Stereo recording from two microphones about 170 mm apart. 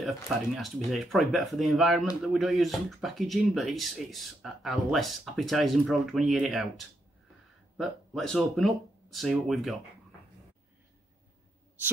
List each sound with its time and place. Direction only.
0.6 s speech: centre (ahead or behind)
7.7 s speech: centre (ahead or behind)